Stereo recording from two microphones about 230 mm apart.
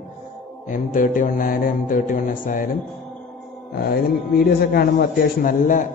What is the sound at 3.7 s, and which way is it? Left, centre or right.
A man's voice, left.